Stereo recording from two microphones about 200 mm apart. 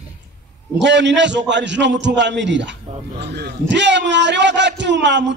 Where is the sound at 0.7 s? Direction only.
60° right (ahead or behind).